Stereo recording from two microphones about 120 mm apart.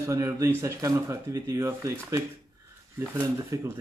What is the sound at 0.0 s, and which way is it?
Speech, 25° right (ahead or behind).